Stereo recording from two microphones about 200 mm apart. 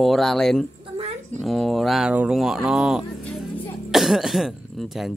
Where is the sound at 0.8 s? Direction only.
30° right (ahead or behind).